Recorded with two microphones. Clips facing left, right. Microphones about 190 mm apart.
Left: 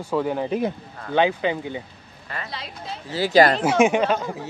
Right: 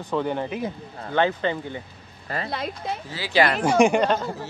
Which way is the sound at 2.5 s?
50° right (ahead or behind).